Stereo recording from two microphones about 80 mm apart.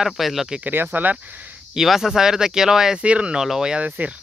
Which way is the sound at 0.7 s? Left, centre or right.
Right.